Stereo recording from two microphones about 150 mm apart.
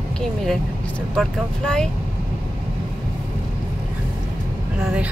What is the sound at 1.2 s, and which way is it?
Speech, 5° left (ahead or behind).